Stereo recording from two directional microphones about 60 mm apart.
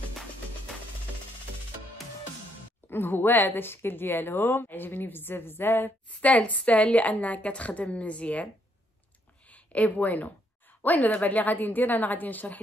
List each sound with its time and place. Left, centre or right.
2.9 s a woman's voice: left
6.0 s a woman's voice: left
9.5 s a woman's voice: left